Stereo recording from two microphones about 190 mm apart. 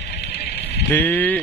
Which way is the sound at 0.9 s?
10° left (ahead or behind).